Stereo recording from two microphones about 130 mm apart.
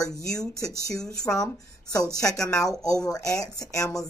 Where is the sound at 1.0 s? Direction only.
5° left (ahead or behind).